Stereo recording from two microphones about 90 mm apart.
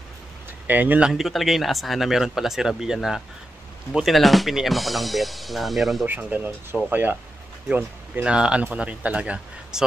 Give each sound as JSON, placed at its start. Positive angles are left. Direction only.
{"t": 0.7, "sound": "speech", "side_deg": -20}
{"t": 1.1, "sound": "speech", "side_deg": 0}
{"t": 6.0, "sound": "speech", "side_deg": -20}